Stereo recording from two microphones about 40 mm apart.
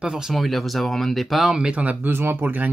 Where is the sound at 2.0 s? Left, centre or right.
Right.